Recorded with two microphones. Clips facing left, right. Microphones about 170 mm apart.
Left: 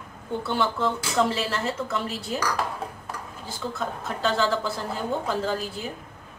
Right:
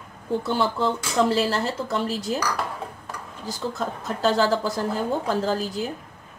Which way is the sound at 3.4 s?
40° right (ahead or behind).